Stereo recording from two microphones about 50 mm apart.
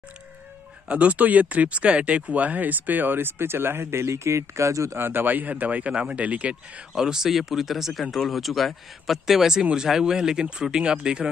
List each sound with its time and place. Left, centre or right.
0.8 s speech: right
4.9 s speech: right
7.0 s speech: centre